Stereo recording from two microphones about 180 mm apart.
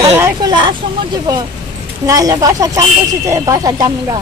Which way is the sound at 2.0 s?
20° right (ahead or behind).